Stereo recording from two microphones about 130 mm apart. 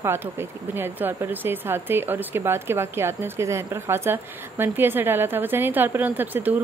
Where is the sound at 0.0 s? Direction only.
20° right (ahead or behind).